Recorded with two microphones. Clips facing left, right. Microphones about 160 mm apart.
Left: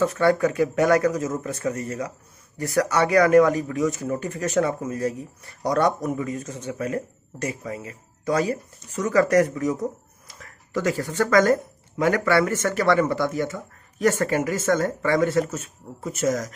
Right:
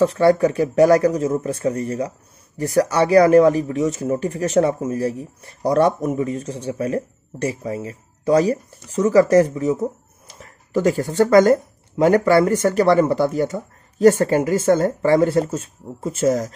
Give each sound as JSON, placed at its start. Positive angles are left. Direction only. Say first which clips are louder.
{"t": 0.0, "sound": "speech", "louder": "right 5 dB", "side_deg": -30}